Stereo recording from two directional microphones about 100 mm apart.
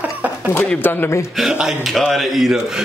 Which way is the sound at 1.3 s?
5° right (ahead or behind).